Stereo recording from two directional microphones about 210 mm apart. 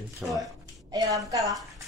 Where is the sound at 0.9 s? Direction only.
15° right (ahead or behind).